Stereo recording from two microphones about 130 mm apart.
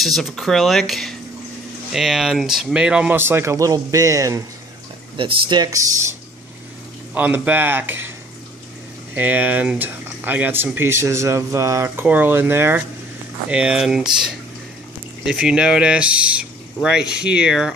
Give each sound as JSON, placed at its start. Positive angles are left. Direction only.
{"t": 0.0, "sound": "speech", "side_deg": 0}
{"t": 5.1, "sound": "speech", "side_deg": -35}
{"t": 7.2, "sound": "speech", "side_deg": -15}
{"t": 9.1, "sound": "speech", "side_deg": -15}